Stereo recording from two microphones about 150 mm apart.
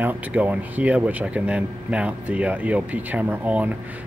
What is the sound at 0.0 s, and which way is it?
Speech, 10° right (ahead or behind).